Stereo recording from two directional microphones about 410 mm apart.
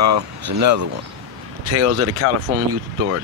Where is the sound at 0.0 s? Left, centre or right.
Right.